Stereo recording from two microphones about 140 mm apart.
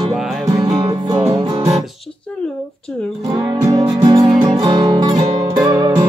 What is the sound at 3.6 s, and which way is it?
Music, 30° right (ahead or behind).